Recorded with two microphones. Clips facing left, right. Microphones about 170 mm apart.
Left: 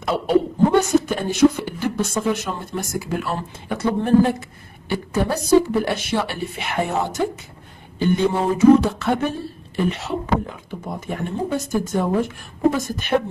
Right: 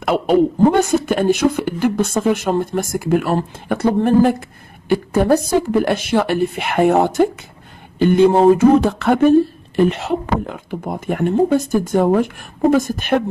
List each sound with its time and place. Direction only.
0.7 s speech: 55° right (ahead or behind)